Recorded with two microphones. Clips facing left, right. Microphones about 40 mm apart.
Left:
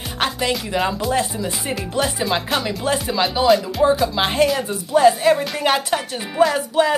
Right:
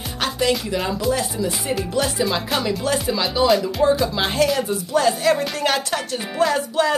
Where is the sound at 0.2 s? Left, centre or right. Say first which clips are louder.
Left 3 dB; left.